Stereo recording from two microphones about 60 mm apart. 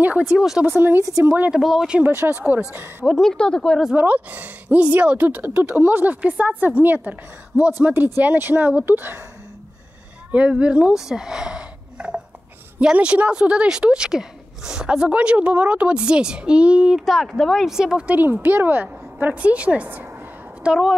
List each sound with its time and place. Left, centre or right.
0.3 s speech: centre
0.7 s speech: right
1.5 s speech: centre
2.0 s speech: right
2.3 s speech: right
3.1 s speech: centre
3.9 s a woman's voice: right
10.5 s a woman's voice: centre
11.0 s speech: centre
17.0 s speech: centre
17.6 s speech: centre
18.0 s a woman's voice: right
20.6 s speech: centre